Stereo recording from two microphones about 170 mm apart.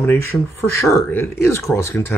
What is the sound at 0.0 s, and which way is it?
Speech, 15° left (ahead or behind).